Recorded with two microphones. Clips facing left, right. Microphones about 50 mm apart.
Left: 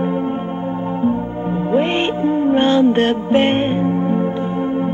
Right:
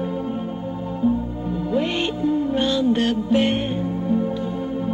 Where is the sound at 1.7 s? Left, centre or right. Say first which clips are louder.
Left 6 dB; left.